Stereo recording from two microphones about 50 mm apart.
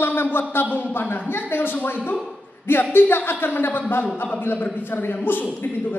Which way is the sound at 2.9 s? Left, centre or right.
Left.